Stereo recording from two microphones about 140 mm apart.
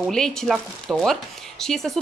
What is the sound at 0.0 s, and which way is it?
Speech, 5° left (ahead or behind).